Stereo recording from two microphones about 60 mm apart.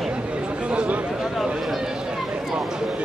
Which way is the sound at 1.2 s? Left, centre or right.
Centre.